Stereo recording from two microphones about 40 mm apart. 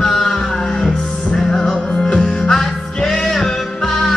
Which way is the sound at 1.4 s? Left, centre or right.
Centre.